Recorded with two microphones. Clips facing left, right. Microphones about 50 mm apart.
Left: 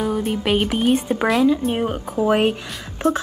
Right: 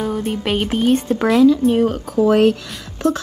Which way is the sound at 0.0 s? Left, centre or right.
Centre.